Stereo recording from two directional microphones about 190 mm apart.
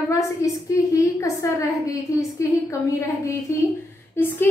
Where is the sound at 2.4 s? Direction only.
15° left (ahead or behind).